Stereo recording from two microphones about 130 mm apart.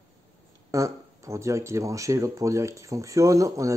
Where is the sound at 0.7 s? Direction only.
25° right (ahead or behind).